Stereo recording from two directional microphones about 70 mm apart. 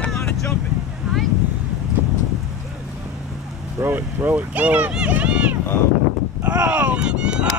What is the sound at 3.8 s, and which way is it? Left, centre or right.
Speech, right.